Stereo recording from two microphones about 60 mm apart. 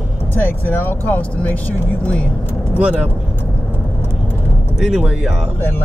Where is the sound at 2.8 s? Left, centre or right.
Right.